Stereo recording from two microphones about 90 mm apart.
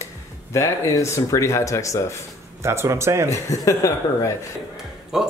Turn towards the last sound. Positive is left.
turn(degrees=-5)  # may be behind; listen again after turning